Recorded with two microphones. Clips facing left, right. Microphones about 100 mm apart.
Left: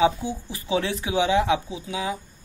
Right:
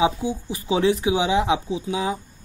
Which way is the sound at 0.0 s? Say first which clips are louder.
Even; 15° right (ahead or behind).